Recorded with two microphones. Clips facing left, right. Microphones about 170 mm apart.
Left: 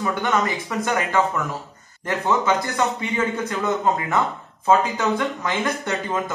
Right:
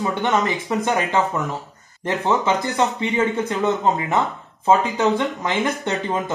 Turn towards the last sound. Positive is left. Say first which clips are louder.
# right 2 dB
turn(degrees=-20)  # may be behind; listen again after turning